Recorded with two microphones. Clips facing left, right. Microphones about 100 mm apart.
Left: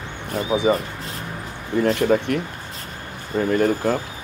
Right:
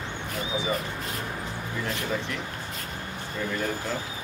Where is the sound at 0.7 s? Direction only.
45° left (ahead or behind).